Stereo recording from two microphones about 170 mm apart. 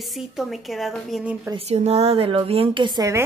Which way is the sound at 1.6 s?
40° right (ahead or behind).